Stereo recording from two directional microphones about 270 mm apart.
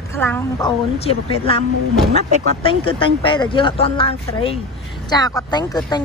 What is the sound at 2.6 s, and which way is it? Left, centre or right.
A woman's voice, centre.